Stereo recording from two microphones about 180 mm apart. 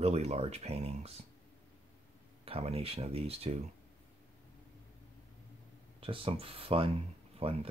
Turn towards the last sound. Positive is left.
turn(degrees=-30)  # may be behind; listen again after turning